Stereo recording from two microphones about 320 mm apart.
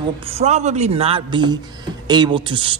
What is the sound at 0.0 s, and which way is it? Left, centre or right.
A man's voice, centre.